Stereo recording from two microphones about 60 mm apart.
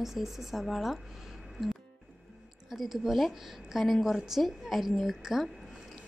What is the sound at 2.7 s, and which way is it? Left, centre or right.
A woman's voice, centre.